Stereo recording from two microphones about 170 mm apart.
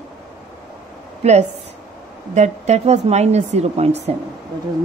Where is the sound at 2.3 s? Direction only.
40° right (ahead or behind).